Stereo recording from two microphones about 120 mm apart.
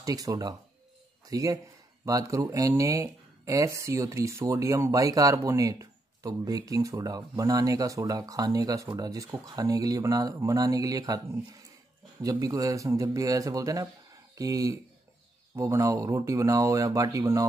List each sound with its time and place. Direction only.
0.0 s speech: 30° right (ahead or behind)
12.2 s speech: 30° right (ahead or behind)